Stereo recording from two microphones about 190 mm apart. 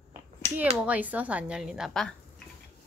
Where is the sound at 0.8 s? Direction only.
10° right (ahead or behind).